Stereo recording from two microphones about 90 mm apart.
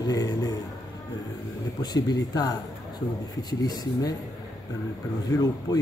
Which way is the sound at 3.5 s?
50° left (ahead or behind).